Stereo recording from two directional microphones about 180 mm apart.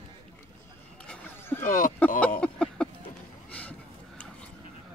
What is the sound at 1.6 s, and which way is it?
Speech, 50° left (ahead or behind).